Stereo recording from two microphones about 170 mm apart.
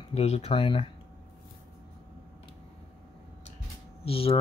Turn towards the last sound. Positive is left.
turn(degrees=35)  # may be behind; listen again after turning